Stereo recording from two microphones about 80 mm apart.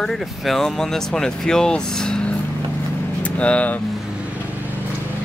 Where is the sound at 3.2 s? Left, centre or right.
Centre.